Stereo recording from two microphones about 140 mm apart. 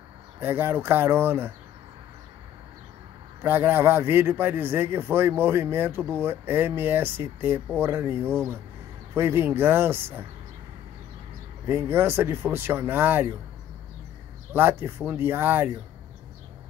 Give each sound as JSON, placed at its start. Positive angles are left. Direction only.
{"t": 0.4, "sound": "a man's voice", "side_deg": -15}
{"t": 3.4, "sound": "a man's voice", "side_deg": -15}
{"t": 11.6, "sound": "a man's voice", "side_deg": -15}
{"t": 14.5, "sound": "a man's voice", "side_deg": -15}